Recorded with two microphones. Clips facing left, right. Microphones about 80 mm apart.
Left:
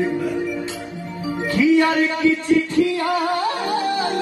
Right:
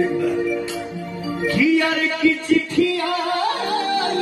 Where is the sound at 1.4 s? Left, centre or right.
Left.